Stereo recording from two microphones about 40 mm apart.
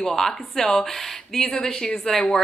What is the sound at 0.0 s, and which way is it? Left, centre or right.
Speech, centre.